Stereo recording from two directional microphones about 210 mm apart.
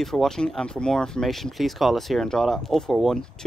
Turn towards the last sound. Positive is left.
turn(degrees=0)  # may be behind; listen again after turning